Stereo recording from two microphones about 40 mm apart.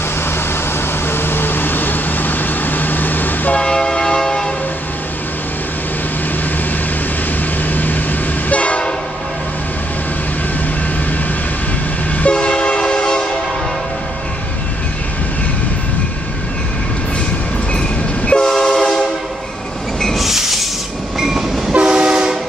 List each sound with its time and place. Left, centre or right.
1.1 s vehicle: left
3.5 s church bell: left
7.6 s vehicle: left
8.5 s train: left
12.2 s train: left
17.7 s train: left
20.2 s train: centre
21.8 s train: right